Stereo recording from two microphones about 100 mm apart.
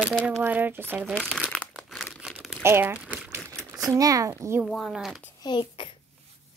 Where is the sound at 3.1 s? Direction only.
25° right (ahead or behind).